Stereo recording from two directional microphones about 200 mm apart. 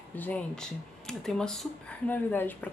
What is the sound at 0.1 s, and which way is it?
Speech, 10° left (ahead or behind).